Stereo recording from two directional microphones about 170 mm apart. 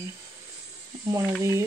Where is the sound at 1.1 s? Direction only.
20° right (ahead or behind).